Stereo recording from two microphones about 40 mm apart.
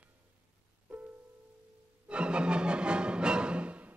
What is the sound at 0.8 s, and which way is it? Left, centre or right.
Music, right.